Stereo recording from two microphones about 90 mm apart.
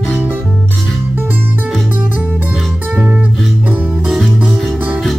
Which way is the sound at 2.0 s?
15° right (ahead or behind).